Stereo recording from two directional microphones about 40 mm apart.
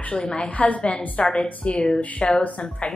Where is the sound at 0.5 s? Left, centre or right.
Left.